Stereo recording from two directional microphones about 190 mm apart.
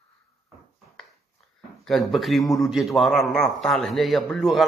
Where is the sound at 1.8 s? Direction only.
Centre (ahead or behind).